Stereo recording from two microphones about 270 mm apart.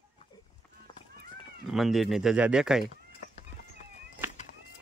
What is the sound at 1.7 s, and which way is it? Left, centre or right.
Speech, centre.